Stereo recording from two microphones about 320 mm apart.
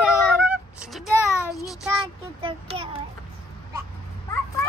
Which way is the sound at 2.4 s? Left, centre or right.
Centre.